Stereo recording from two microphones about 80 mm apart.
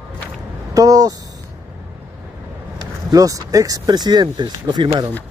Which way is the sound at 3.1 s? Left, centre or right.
Right.